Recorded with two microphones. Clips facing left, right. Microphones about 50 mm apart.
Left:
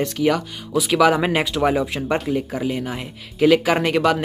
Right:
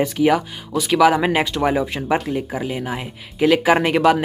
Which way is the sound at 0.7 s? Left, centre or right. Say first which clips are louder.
Right 1 dB; centre.